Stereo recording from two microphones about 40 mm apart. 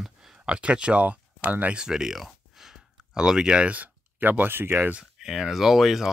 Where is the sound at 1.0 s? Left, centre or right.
Right.